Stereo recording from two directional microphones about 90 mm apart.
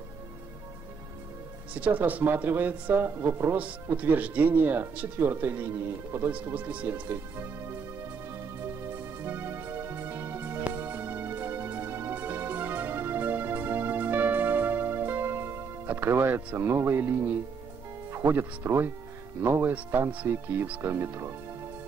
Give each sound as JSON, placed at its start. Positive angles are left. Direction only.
{"t": 1.7, "sound": "speech", "side_deg": -15}
{"t": 3.9, "sound": "speech", "side_deg": -15}
{"t": 8.9, "sound": "music", "side_deg": -25}
{"t": 18.1, "sound": "speech", "side_deg": -25}